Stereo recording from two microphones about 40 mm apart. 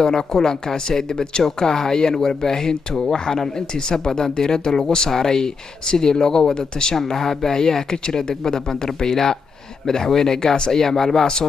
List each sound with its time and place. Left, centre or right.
0.0 s speech: centre